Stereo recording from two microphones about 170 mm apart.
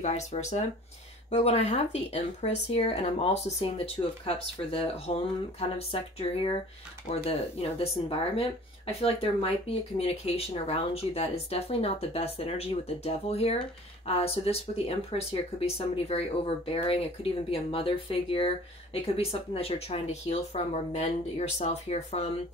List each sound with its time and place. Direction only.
0.0 s speech: 40° left (ahead or behind)